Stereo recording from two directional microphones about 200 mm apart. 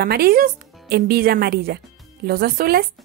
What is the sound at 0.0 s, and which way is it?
A woman's voice, 50° right (ahead or behind).